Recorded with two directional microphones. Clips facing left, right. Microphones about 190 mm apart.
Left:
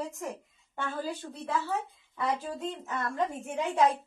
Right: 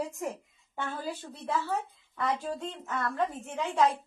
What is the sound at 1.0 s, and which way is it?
A woman's voice, centre (ahead or behind).